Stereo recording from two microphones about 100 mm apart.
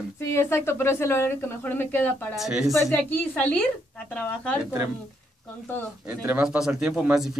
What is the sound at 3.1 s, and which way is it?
Speech, 15° left (ahead or behind).